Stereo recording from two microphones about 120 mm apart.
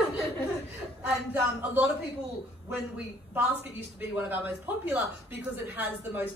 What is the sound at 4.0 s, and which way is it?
Speech, 15° right (ahead or behind).